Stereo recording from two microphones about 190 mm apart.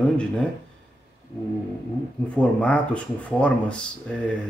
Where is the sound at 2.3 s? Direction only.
5° left (ahead or behind).